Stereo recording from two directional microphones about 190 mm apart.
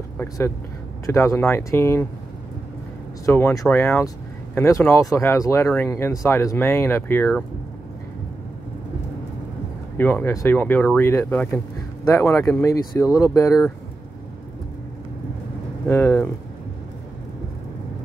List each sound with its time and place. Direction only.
1.0 s speech: 15° left (ahead or behind)
3.3 s speech: 15° left (ahead or behind)
9.9 s speech: 10° left (ahead or behind)
15.9 s speech: 10° left (ahead or behind)